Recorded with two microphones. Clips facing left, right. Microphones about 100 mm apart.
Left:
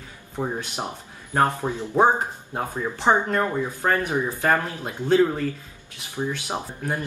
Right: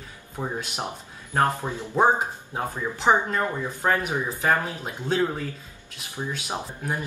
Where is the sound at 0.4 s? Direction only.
15° right (ahead or behind).